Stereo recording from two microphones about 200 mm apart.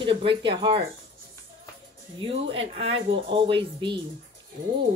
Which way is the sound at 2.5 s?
30° right (ahead or behind).